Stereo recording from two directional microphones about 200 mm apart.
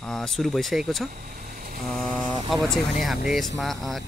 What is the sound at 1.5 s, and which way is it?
Vehicle, 45° right (ahead or behind).